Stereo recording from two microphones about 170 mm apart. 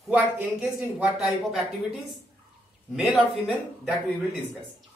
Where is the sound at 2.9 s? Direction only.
Centre (ahead or behind).